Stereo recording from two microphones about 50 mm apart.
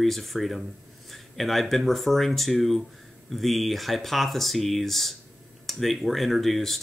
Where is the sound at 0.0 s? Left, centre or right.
Centre.